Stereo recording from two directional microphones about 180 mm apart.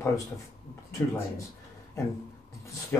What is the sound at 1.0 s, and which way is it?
Speech, 15° left (ahead or behind).